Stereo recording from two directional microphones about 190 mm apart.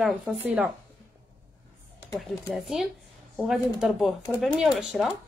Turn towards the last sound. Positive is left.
turn(degrees=0)  # may be behind; listen again after turning